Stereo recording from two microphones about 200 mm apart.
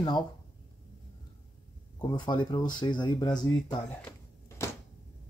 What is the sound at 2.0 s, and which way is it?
Speech, 20° left (ahead or behind).